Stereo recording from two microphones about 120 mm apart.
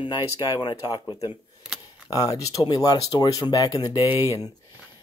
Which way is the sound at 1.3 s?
5° right (ahead or behind).